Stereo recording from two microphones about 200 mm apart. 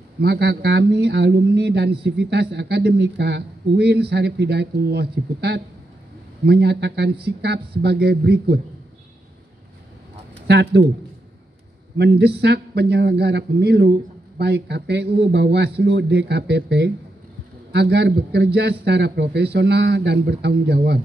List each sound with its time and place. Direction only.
0.2 s a man's voice: 55° right (ahead or behind)
10.4 s speech: 55° right (ahead or behind)
12.0 s speech: 55° right (ahead or behind)